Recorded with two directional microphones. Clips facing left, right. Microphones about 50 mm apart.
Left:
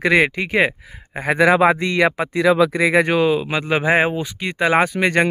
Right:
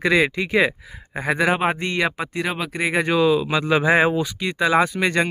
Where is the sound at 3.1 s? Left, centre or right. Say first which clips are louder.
Even; left.